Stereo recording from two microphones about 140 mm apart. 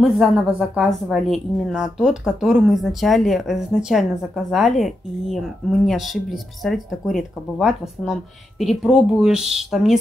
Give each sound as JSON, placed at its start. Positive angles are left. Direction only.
{"t": 0.0, "sound": "a woman's voice", "side_deg": -5}